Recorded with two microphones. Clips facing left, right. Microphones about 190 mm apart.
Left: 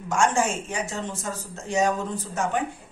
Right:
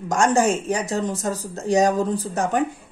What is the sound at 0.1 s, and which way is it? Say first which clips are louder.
Speech: right 4 dB; 40° right (ahead or behind).